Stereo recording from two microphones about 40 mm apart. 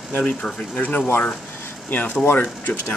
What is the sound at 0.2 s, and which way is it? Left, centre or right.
Speech, left.